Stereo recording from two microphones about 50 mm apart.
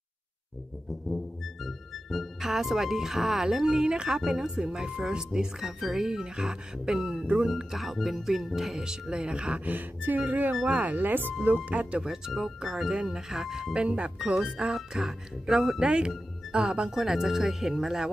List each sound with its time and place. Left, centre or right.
1.0 s music: centre
2.4 s speech: centre
9.7 s a sound: right
11.4 s speech: right
12.3 s music: centre
12.9 s speech: centre
13.7 s speech: right
15.0 s speech: centre